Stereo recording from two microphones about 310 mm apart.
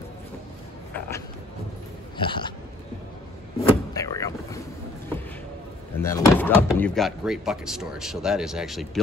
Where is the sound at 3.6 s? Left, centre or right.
Centre.